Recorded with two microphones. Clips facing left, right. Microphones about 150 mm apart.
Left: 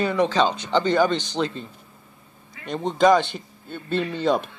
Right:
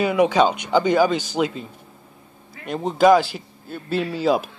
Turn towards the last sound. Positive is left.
turn(degrees=-5)  # may be behind; listen again after turning